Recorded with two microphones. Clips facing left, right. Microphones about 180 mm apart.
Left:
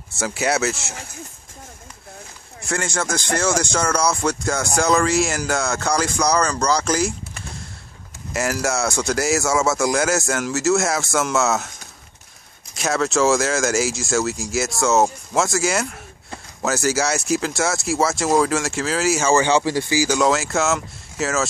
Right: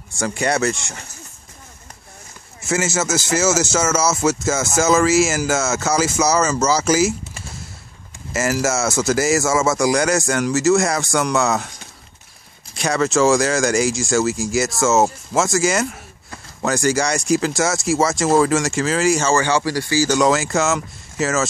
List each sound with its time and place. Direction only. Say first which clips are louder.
0.1 s speech: right 1 dB; 5° left (ahead or behind)
2.6 s speech: right 4 dB; 5° right (ahead or behind)
12.7 s speech: right 2 dB; centre (ahead or behind)
19.3 s speech: left 1 dB; 20° left (ahead or behind)
20.1 s speech: right 2 dB; centre (ahead or behind)